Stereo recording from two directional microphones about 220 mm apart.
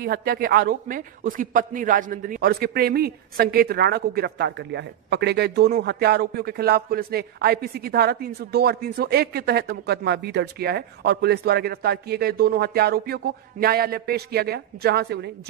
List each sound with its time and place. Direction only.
0.0 s a man's voice: 45° right (ahead or behind)